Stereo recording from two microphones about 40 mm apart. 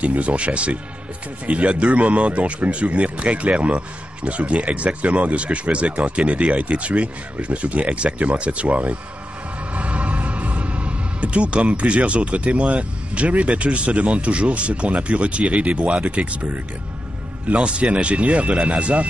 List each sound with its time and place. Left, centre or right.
0.0 s speech: right